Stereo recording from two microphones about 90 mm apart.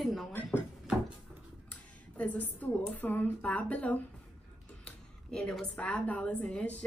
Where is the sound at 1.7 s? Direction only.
15° left (ahead or behind).